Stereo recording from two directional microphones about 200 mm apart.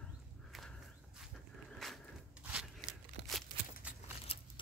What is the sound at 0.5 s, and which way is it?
Walk, centre (ahead or behind).